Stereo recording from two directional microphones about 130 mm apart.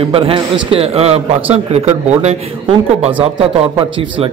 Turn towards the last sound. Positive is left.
turn(degrees=-45)  # may be behind; listen again after turning